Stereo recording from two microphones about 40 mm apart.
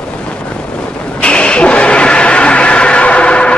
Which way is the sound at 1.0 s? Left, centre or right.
Left.